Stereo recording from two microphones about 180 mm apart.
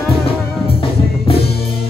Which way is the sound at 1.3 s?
30° left (ahead or behind).